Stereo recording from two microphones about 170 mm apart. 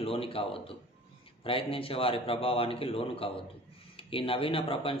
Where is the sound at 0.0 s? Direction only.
35° left (ahead or behind).